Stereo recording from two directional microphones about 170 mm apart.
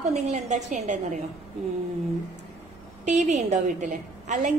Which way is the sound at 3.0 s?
45° right (ahead or behind).